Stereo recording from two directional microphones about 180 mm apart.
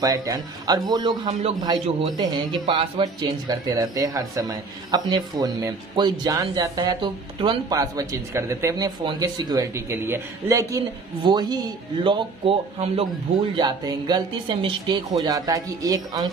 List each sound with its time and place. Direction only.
0.0 s speech: 20° right (ahead or behind)